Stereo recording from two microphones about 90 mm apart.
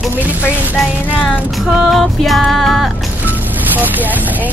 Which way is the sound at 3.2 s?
20° right (ahead or behind).